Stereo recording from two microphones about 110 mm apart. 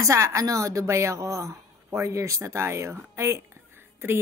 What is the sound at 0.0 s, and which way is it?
Speech, 30° right (ahead or behind).